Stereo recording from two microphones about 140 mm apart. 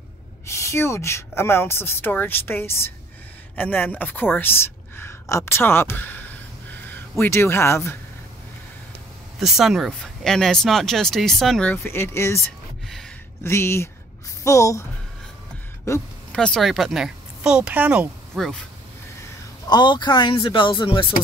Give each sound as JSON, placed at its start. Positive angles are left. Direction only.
{"t": 0.5, "sound": "a woman's voice", "side_deg": 20}
{"t": 9.4, "sound": "speech", "side_deg": 0}
{"t": 11.7, "sound": "speech", "side_deg": 15}
{"t": 13.4, "sound": "speech", "side_deg": 20}
{"t": 16.3, "sound": "speech", "side_deg": 5}
{"t": 18.3, "sound": "speech", "side_deg": 0}
{"t": 19.7, "sound": "speech", "side_deg": 30}